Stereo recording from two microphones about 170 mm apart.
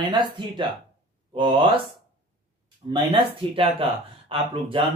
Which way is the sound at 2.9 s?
30° right (ahead or behind).